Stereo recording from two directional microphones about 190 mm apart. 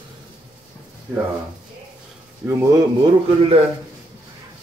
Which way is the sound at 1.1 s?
5° right (ahead or behind).